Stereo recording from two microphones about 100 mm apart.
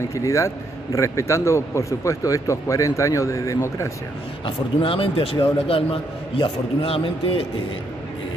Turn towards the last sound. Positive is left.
turn(degrees=70)  # may be behind; listen again after turning